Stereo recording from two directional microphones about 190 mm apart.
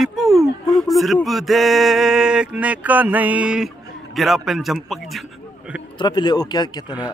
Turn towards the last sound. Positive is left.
turn(degrees=20)  # may be behind; listen again after turning